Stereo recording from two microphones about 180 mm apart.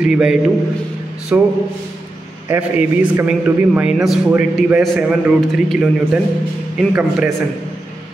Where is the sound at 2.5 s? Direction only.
10° right (ahead or behind).